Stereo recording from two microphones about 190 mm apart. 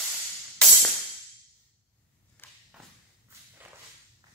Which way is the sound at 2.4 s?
10° left (ahead or behind).